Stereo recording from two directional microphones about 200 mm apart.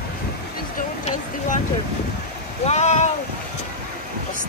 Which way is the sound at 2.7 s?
35° left (ahead or behind).